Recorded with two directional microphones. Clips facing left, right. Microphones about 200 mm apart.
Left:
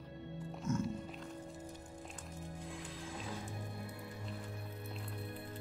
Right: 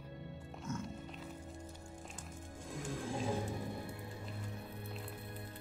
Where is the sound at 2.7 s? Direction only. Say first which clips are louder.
Right 5 dB; 45° right (ahead or behind).